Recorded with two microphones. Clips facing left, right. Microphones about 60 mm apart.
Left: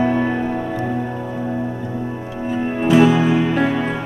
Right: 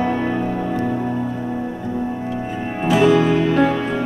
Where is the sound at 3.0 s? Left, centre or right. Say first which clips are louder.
Even; centre.